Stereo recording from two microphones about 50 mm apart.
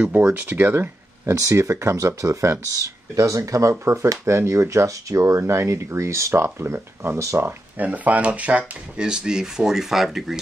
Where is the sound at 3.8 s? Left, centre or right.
Right.